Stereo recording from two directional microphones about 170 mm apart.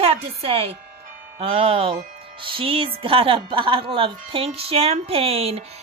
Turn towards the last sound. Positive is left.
turn(degrees=-35)  # may be behind; listen again after turning